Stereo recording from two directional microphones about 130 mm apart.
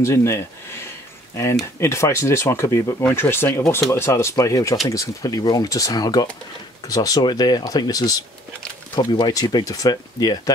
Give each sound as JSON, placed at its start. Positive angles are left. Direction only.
{"t": 0.0, "sound": "speech", "side_deg": 20}